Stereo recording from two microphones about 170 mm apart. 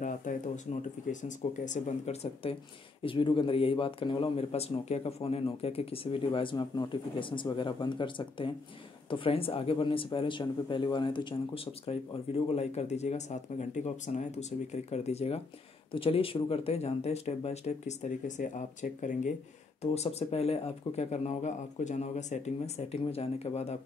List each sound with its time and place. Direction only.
0.0 s speech: 50° left (ahead or behind)
3.0 s speech: 30° left (ahead or behind)